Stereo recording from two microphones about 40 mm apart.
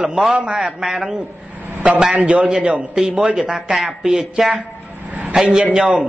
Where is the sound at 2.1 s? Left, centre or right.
Right; by 4.6 s centre.